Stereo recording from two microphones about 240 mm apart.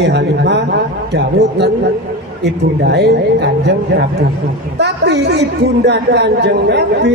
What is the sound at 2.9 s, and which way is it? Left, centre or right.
Speech, right.